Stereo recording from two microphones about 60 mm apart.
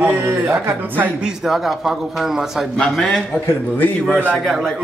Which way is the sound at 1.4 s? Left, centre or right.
Centre.